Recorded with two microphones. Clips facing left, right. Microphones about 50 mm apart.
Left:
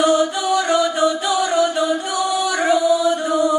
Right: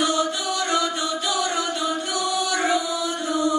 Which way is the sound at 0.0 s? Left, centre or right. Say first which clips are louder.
Left 6 dB; left.